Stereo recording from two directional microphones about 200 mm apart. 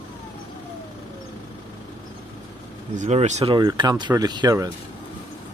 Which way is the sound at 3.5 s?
20° right (ahead or behind).